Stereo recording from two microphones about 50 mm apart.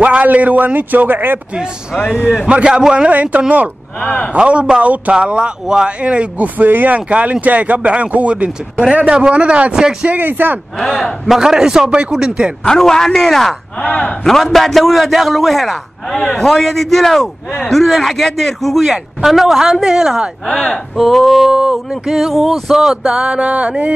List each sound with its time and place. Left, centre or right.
0.0 s a man's voice: right
2.4 s speech: centre
2.8 s a sound: centre
3.1 s speech: right
4.0 s a man's voice: centre
4.3 s speech: right
10.0 s a man's voice: right
10.8 s a man's voice: centre
11.2 s a sound: centre
12.6 s a man's voice: centre
13.8 s a man's voice: centre
14.2 s a man's voice: centre
20.9 s a man's voice: centre
21.5 s a sound: centre